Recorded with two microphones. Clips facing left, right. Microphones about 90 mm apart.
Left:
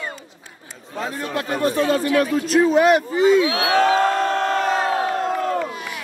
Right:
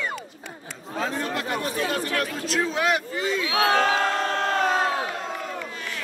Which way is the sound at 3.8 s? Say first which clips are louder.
Left 6 dB; 45° left (ahead or behind).